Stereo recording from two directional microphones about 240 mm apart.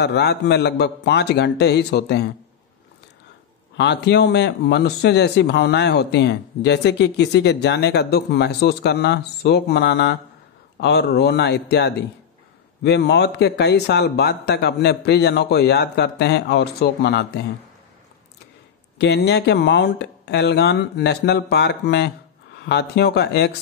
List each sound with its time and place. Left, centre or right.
0.0 s speech: left
3.7 s speech: left
18.9 s speech: left